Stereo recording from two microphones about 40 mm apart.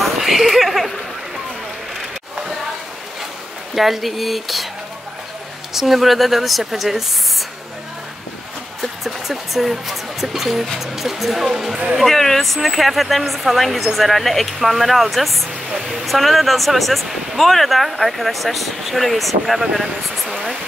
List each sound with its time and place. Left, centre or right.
0.2 s a sound: centre
3.7 s speech: centre
5.7 s speech: centre
8.8 s speech: centre
12.0 s speech: centre